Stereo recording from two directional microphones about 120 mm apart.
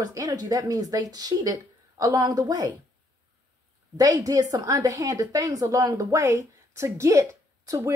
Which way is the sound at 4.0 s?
30° right (ahead or behind).